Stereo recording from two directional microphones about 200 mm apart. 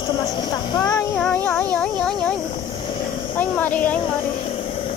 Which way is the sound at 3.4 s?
10° left (ahead or behind).